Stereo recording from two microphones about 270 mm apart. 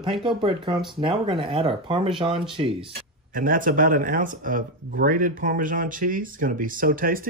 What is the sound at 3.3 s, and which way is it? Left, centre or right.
Speech, right.